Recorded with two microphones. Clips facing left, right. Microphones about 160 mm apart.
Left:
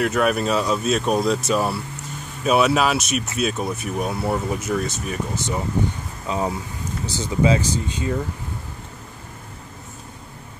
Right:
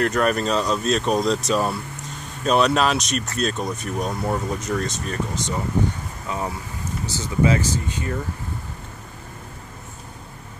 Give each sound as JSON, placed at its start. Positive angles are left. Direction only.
{"t": 0.0, "sound": "speech", "side_deg": 5}
{"t": 6.2, "sound": "speech", "side_deg": 20}